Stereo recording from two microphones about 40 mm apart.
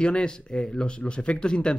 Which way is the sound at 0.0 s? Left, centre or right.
Left.